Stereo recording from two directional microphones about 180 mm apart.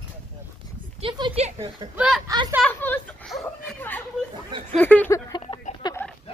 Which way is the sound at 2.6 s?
10° left (ahead or behind).